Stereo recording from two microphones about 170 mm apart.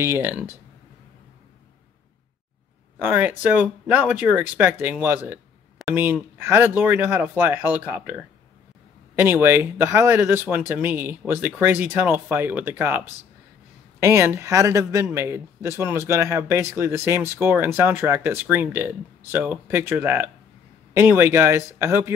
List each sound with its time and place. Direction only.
0.0 s speech: 15° right (ahead or behind)
3.0 s speech: 10° right (ahead or behind)